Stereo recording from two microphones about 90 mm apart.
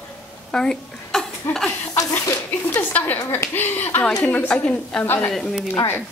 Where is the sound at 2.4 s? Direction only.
20° left (ahead or behind).